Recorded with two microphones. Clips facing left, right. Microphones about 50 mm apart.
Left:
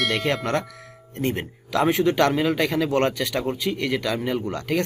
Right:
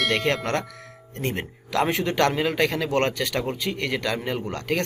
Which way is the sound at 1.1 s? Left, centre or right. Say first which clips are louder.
Left 3 dB; centre.